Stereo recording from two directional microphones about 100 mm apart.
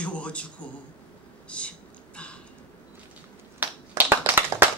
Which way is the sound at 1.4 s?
10° left (ahead or behind).